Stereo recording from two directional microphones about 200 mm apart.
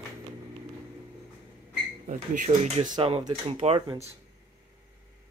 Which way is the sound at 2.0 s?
35° right (ahead or behind).